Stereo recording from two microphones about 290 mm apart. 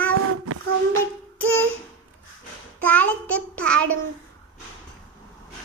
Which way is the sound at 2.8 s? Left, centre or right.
Centre.